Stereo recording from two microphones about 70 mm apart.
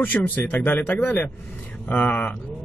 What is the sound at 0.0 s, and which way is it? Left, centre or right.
Speech, left.